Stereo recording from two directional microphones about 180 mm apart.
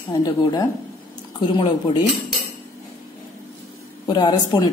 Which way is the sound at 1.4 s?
25° left (ahead or behind).